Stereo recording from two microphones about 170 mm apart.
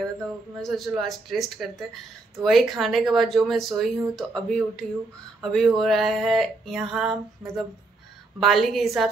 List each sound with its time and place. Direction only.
0.0 s speech: centre (ahead or behind)